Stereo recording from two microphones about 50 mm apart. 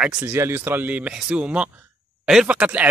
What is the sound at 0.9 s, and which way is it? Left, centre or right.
A man's voice, right.